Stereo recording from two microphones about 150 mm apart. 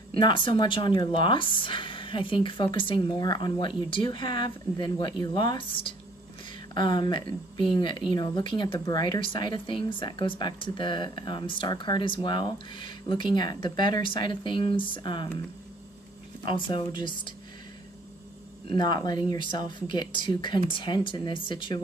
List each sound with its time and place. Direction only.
0.1 s speech: 35° left (ahead or behind)
16.4 s speech: 30° left (ahead or behind)
18.7 s speech: 30° left (ahead or behind)